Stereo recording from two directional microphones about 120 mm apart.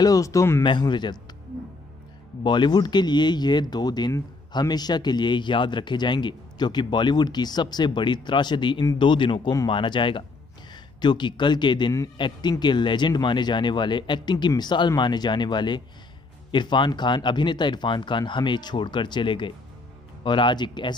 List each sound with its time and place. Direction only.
0.0 s speech: 30° left (ahead or behind)
0.7 s speech: 40° left (ahead or behind)
2.4 s speech: 40° left (ahead or behind)